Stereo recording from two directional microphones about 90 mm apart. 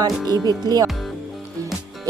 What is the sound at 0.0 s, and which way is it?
Music, 45° right (ahead or behind).